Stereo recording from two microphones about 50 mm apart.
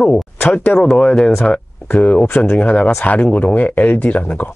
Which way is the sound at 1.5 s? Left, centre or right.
Left.